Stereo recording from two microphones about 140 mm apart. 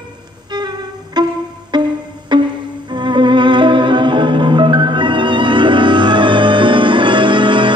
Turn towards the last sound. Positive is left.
turn(degrees=-35)  # may be behind; listen again after turning